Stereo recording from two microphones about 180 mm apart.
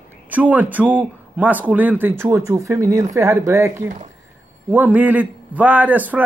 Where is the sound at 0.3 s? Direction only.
10° right (ahead or behind).